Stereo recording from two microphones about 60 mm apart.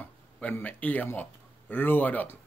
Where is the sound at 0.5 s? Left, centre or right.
Left.